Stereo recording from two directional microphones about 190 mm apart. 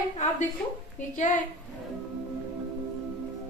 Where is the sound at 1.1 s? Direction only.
40° left (ahead or behind).